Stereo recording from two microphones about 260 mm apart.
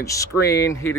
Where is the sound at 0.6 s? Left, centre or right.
Centre.